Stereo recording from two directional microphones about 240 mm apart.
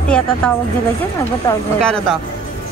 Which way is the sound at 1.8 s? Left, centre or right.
Centre.